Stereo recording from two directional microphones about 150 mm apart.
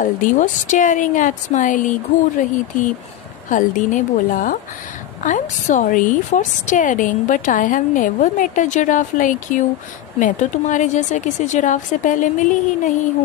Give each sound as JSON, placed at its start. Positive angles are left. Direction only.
{"t": 0.0, "sound": "a woman's voice", "side_deg": 60}
{"t": 3.4, "sound": "a woman's voice", "side_deg": 60}